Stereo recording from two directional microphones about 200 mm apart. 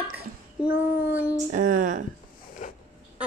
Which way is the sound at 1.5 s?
40° right (ahead or behind).